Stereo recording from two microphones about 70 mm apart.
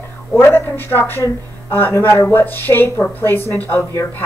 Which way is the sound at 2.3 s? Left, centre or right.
Left.